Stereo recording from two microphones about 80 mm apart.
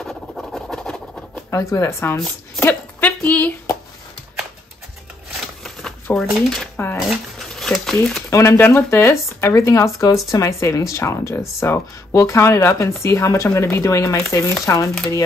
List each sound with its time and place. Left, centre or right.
0.0 s a sound: centre
1.5 s speech: left
2.1 s speech: centre
2.6 s a sound: left
5.6 s shuffling cards: centre
6.1 s speech: centre
8.3 s speech: left
8.6 s speech: left